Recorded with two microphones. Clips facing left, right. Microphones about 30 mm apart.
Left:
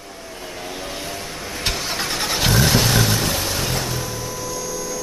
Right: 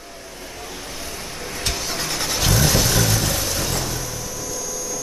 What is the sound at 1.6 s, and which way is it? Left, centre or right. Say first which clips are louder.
Vehicle: left 2 dB; left.